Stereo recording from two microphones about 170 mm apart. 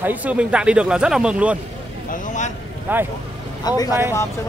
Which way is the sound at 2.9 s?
10° right (ahead or behind).